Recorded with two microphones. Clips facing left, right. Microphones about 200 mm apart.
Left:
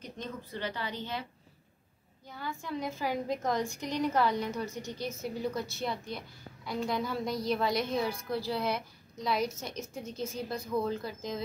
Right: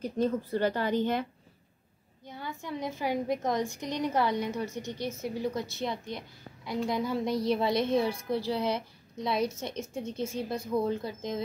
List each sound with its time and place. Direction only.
0.2 s speech: 40° right (ahead or behind)
2.2 s a woman's voice: 20° right (ahead or behind)